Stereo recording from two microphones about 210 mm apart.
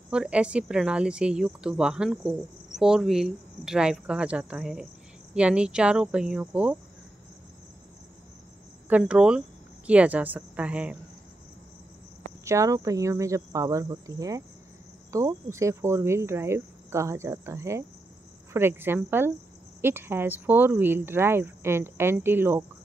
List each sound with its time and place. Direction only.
0.1 s a woman's voice: 5° right (ahead or behind)
8.8 s a woman's voice: 5° right (ahead or behind)
12.4 s speech: 15° right (ahead or behind)